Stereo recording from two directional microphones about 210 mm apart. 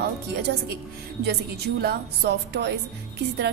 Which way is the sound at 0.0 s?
50° right (ahead or behind).